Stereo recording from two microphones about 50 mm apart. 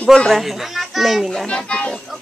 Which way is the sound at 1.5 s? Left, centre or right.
Centre.